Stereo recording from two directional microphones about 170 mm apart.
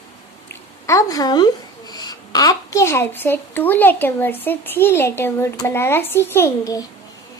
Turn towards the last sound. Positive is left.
turn(degrees=20)  # may be behind; listen again after turning